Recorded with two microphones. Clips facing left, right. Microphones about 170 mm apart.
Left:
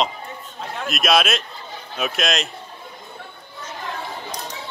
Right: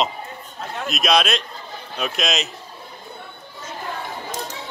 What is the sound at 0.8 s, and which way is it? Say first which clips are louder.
Speech: even; centre (ahead or behind).